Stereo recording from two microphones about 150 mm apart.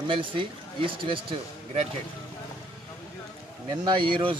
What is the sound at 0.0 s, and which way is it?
Speech, 35° right (ahead or behind).